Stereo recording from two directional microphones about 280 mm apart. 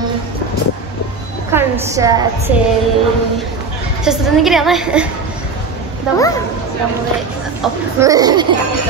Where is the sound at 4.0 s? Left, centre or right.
Centre.